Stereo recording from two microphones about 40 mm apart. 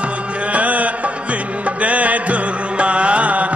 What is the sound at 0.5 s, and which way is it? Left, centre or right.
Music, right.